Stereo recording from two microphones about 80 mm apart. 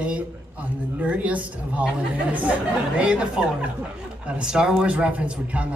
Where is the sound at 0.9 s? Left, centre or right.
Centre.